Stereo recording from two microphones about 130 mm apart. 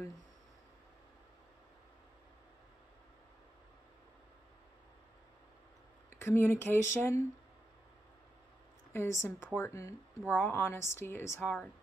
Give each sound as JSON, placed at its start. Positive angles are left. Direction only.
{"t": 6.1, "sound": "a woman's voice", "side_deg": 15}
{"t": 8.9, "sound": "a woman's voice", "side_deg": 20}